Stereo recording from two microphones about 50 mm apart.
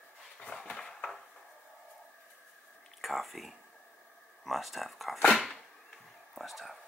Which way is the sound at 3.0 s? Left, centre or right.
Centre.